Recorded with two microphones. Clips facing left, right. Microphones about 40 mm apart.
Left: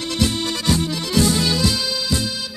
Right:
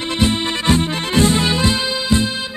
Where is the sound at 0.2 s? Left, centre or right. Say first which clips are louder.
Right 4 dB; right.